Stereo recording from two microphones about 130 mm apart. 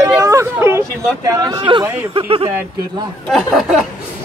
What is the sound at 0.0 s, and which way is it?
Speech, 25° right (ahead or behind).